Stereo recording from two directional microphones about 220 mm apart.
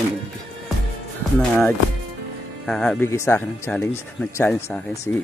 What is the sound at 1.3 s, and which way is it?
Speech, 5° left (ahead or behind).